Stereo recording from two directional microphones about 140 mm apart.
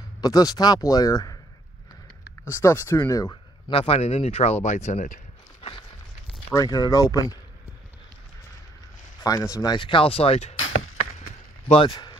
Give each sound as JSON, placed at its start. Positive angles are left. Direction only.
{"t": 0.2, "sound": "speech", "side_deg": 25}
{"t": 2.5, "sound": "speech", "side_deg": 20}
{"t": 3.7, "sound": "speech", "side_deg": 45}
{"t": 5.6, "sound": "a sound", "side_deg": 40}
{"t": 6.5, "sound": "speech", "side_deg": 25}
{"t": 9.2, "sound": "speech", "side_deg": 25}
{"t": 11.6, "sound": "speech", "side_deg": 45}
{"t": 11.9, "sound": "a sound", "side_deg": 30}